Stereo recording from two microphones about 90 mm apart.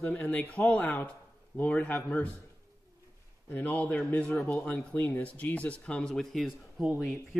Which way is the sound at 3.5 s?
20° left (ahead or behind).